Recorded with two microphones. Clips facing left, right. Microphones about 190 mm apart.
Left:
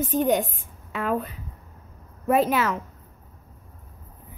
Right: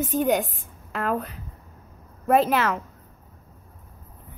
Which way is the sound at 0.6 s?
40° right (ahead or behind).